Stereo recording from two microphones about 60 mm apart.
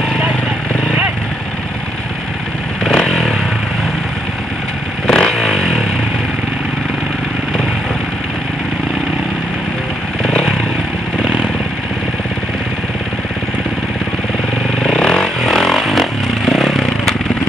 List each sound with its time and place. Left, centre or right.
2.8 s motorcycle: centre
5.0 s vehicle: centre
10.2 s vehicle: centre
14.8 s vehicle: centre